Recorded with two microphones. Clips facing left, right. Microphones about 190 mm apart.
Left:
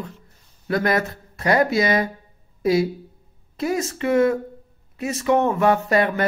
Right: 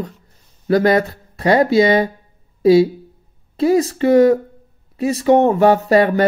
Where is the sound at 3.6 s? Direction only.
30° right (ahead or behind).